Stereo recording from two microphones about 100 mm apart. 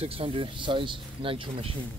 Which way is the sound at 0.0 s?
65° right (ahead or behind).